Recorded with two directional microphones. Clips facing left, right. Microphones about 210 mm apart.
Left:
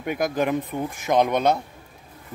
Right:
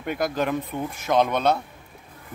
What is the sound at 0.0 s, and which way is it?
Speech, 10° left (ahead or behind).